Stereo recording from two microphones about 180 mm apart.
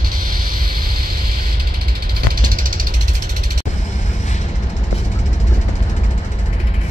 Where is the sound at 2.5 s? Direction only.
50° right (ahead or behind).